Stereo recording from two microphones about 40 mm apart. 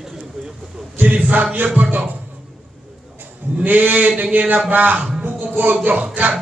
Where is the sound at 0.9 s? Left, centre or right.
Right.